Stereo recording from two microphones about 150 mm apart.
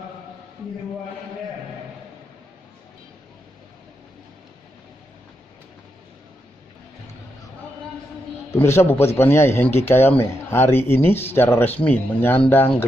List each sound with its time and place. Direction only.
8.5 s speech: 15° left (ahead or behind)